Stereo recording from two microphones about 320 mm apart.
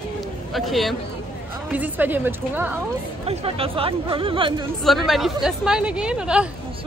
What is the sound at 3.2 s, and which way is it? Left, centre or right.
Speech, centre.